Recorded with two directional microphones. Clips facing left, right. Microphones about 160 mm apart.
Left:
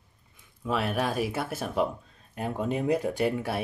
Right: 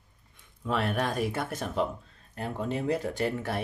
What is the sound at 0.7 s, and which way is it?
Speech, 5° left (ahead or behind).